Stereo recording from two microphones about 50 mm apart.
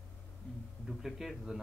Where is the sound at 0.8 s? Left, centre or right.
Centre.